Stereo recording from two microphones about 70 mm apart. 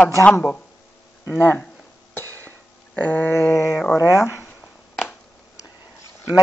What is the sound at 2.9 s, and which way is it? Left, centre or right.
Speech, left.